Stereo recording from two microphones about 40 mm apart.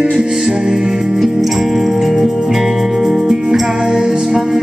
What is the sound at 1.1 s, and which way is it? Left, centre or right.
Music, centre.